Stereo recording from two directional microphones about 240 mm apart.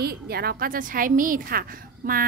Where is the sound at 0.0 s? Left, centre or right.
Right.